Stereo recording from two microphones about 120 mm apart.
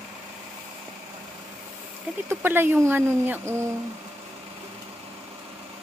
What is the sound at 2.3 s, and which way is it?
Speech, 15° right (ahead or behind).